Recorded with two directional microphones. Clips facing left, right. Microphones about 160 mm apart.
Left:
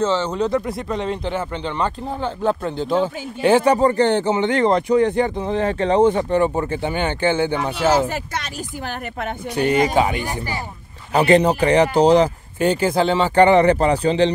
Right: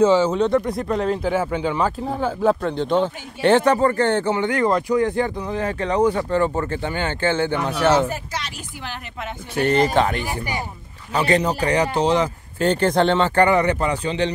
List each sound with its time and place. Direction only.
0.0 s speech: 10° right (ahead or behind); by 8.1 s 10° left (ahead or behind)
9.6 s speech: 10° left (ahead or behind)
11.1 s speech: 30° left (ahead or behind)
12.5 s speech: 10° left (ahead or behind)
13.4 s speech: 25° left (ahead or behind)